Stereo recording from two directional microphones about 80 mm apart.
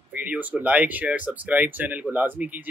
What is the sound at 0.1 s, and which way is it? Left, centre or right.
Speech, right.